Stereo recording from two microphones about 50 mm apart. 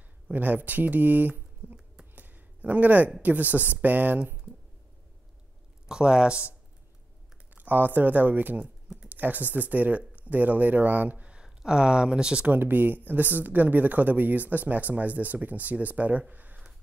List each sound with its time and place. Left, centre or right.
0.3 s speech: right
2.1 s a sound: right
3.2 s speech: right
5.9 s speech: centre
7.5 s speech: right
8.8 s a sound: centre
9.1 s speech: right
11.4 s speech: centre
12.4 s speech: right